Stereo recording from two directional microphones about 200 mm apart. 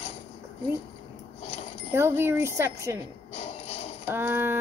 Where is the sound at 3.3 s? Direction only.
30° left (ahead or behind).